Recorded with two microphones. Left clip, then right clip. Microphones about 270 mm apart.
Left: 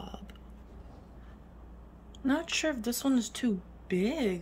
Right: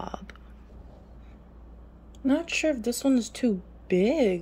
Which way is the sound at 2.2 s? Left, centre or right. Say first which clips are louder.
Right 5 dB; centre.